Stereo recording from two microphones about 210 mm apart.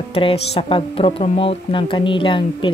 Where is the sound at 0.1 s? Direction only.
25° left (ahead or behind).